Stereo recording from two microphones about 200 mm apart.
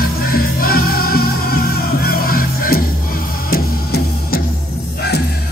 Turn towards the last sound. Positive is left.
turn(degrees=50)  # may be behind; listen again after turning